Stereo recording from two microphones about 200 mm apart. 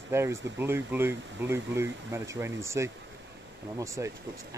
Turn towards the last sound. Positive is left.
turn(degrees=-15)  # may be behind; listen again after turning